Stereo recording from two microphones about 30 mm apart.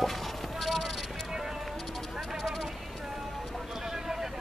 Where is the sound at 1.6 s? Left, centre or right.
Centre.